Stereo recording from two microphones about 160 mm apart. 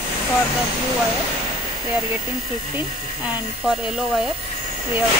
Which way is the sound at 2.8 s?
5° right (ahead or behind).